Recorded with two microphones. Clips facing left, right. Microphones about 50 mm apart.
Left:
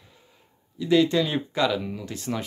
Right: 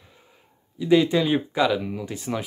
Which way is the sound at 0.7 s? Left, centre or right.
Centre.